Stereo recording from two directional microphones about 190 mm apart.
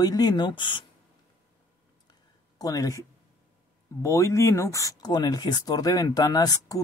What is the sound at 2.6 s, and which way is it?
Speech, 20° left (ahead or behind).